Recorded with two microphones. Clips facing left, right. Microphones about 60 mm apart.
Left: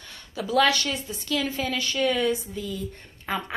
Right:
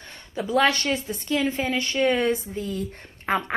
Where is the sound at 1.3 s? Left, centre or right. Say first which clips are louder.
Right 3 dB; right.